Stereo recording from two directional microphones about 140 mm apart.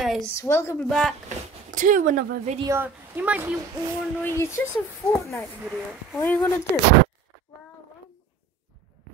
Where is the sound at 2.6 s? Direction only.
15° right (ahead or behind).